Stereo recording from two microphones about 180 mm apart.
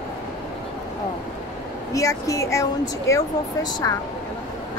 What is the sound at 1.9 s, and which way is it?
Speech, 15° left (ahead or behind).